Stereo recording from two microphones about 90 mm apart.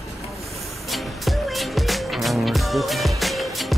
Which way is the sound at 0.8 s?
Centre (ahead or behind).